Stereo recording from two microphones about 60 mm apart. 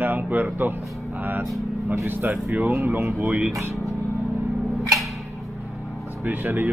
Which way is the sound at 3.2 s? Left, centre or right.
Right.